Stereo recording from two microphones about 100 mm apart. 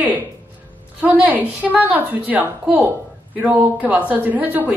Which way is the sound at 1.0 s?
15° right (ahead or behind).